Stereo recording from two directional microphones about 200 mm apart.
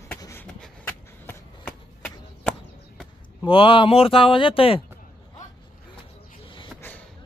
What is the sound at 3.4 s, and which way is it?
Speech, 25° left (ahead or behind).